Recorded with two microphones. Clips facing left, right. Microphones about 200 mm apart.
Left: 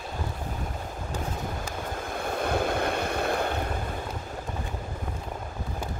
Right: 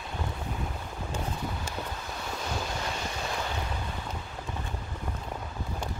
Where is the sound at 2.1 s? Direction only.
55° left (ahead or behind).